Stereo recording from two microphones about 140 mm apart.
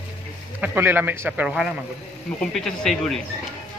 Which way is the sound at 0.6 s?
15° right (ahead or behind).